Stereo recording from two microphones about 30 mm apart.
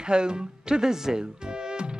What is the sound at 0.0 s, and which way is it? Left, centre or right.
Music, right.